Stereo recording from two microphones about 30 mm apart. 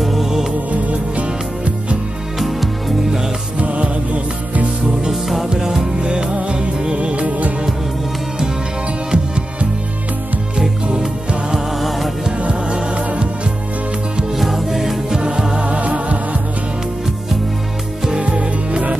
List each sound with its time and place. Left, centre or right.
0.0 s music: centre
0.9 s music: right
2.3 s music: centre
3.5 s music: right
5.1 s music: centre
5.5 s music: right
9.1 s music: right
11.8 s music: centre
12.4 s music: right
14.3 s music: centre
15.0 s music: right
15.8 s music: right
18.2 s music: right